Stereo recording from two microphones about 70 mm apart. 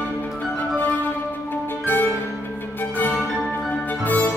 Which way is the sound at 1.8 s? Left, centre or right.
Left.